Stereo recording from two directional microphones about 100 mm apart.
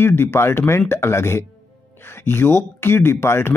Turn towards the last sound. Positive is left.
turn(degrees=25)  # may be behind; listen again after turning